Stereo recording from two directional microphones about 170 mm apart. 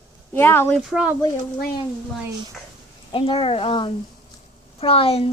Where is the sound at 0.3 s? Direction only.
15° left (ahead or behind).